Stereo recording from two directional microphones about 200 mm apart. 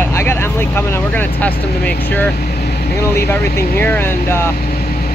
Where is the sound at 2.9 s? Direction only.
15° left (ahead or behind).